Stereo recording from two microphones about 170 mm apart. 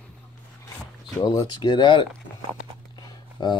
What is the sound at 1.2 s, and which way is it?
Speech, 25° left (ahead or behind).